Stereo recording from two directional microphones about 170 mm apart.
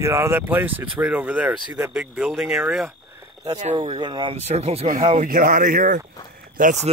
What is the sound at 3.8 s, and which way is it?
Speech, 25° right (ahead or behind).